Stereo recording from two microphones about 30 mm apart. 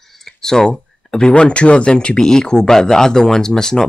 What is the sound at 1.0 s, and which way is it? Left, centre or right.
Speech, left.